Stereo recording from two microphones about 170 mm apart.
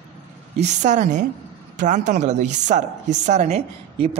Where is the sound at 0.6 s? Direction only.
45° right (ahead or behind).